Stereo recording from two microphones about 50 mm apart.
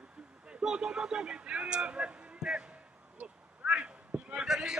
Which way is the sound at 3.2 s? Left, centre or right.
Right.